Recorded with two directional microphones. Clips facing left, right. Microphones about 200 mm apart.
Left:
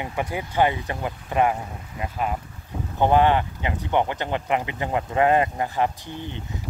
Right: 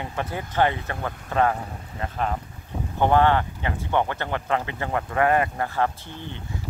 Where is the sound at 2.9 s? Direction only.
15° left (ahead or behind).